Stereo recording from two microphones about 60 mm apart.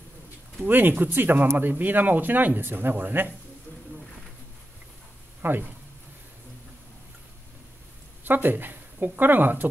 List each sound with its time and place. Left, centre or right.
0.6 s speech: right
5.4 s speech: right
8.2 s speech: right